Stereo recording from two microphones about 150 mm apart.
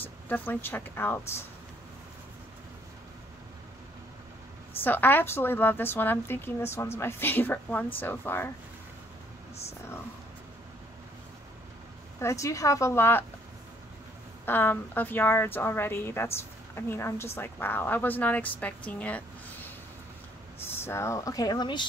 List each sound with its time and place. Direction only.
0.0 s speech: 15° left (ahead or behind)
4.8 s speech: 15° left (ahead or behind)
12.2 s speech: 20° left (ahead or behind)
14.4 s speech: 15° left (ahead or behind); by 21.8 s 30° left (ahead or behind)